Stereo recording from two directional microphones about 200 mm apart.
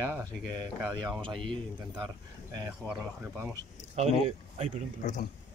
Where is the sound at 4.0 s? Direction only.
35° right (ahead or behind).